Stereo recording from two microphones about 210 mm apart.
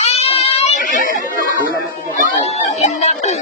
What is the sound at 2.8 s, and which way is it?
Music, 30° left (ahead or behind).